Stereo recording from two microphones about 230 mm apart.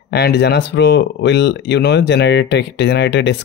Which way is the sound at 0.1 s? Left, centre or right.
Left.